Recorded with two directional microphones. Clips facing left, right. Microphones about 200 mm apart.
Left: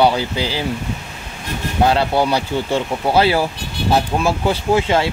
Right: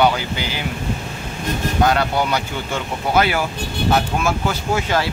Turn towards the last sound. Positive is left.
turn(degrees=30)  # may be behind; listen again after turning